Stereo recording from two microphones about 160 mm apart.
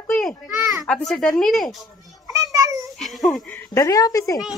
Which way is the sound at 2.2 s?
20° right (ahead or behind).